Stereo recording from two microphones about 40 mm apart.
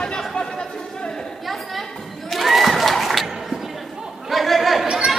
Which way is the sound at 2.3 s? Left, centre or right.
Centre.